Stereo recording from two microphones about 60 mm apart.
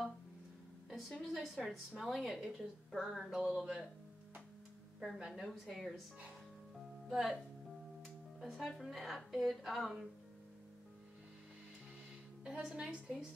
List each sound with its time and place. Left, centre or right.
0.8 s a sound: centre
1.2 s a woman's voice: centre
5.1 s a woman's voice: centre
7.1 s speech: centre
8.4 s a woman's voice: centre
12.4 s a woman's voice: centre